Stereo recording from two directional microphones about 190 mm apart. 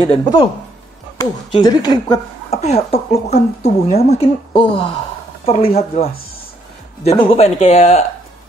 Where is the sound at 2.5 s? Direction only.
35° left (ahead or behind).